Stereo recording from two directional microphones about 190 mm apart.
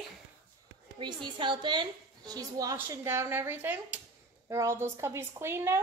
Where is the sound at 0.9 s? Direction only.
25° right (ahead or behind).